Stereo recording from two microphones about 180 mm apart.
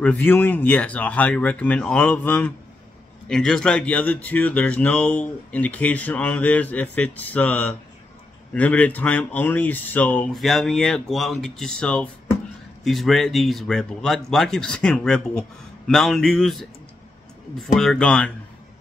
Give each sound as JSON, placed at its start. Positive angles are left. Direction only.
{"t": 0.0, "sound": "speech", "side_deg": 10}